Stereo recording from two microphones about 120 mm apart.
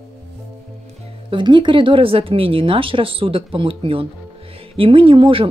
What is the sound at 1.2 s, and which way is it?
Speech, 40° right (ahead or behind).